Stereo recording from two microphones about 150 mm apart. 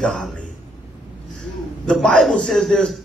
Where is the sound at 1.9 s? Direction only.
5° left (ahead or behind).